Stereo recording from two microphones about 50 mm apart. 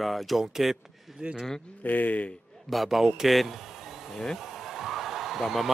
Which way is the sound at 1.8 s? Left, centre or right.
Left.